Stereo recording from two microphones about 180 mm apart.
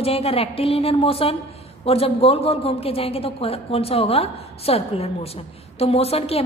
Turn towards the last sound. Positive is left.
turn(degrees=35)  # may be behind; listen again after turning